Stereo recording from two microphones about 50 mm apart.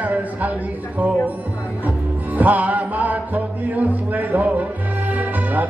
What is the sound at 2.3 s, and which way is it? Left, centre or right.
Music, right.